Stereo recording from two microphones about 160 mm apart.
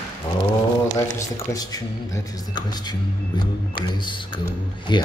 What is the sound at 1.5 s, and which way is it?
Speech, 25° left (ahead or behind).